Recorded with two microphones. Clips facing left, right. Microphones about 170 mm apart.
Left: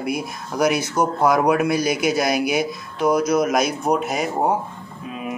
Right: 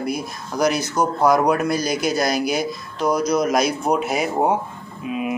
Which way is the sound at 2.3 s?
55° left (ahead or behind).